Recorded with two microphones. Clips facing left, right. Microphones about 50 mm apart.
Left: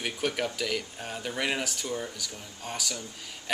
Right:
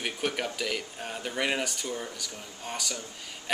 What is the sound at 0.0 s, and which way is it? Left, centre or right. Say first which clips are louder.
Speech: left 1 dB; centre.